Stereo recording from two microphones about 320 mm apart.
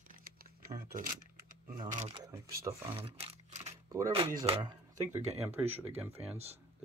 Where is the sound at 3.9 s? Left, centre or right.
Centre.